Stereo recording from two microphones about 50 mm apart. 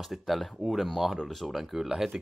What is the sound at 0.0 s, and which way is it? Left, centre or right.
Speech, centre.